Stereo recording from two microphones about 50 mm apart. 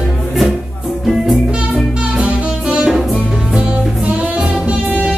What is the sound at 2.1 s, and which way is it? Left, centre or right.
Music, right.